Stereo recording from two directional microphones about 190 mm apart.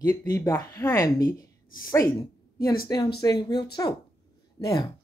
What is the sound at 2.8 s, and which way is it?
Speech, 20° left (ahead or behind).